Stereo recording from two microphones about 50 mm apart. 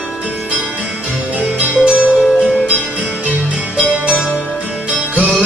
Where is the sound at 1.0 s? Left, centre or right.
Right.